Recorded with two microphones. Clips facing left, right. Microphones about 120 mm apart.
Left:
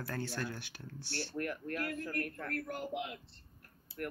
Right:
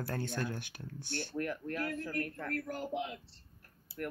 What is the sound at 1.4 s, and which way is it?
Speech, 5° left (ahead or behind).